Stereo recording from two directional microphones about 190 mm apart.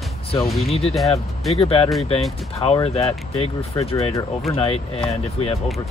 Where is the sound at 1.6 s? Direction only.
30° left (ahead or behind).